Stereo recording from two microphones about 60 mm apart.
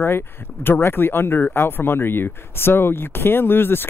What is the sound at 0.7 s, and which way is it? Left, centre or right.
Speech, left.